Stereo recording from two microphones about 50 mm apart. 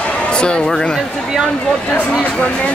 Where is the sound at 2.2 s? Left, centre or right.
Left.